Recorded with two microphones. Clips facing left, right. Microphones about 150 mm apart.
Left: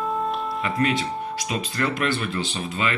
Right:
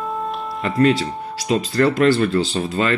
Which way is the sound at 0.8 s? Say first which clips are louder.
Right 9 dB; 30° right (ahead or behind).